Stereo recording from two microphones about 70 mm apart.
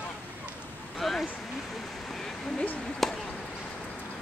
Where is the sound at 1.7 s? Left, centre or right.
Centre.